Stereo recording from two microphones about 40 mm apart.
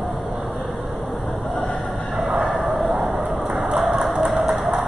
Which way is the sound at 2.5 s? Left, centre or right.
Centre.